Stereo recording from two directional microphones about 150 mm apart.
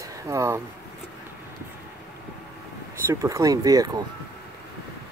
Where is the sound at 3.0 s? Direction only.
20° right (ahead or behind).